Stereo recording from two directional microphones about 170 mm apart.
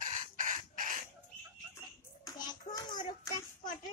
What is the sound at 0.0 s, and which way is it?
Chicken, 45° right (ahead or behind).